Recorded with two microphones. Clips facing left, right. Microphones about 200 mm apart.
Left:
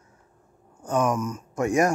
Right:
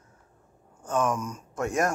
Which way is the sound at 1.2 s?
5° left (ahead or behind).